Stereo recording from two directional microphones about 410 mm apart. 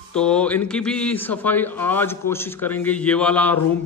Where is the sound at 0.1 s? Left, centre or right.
Centre.